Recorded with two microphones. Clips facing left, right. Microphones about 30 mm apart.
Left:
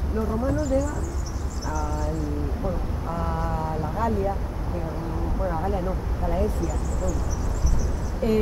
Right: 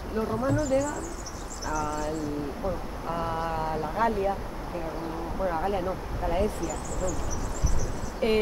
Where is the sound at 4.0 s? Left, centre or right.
Right.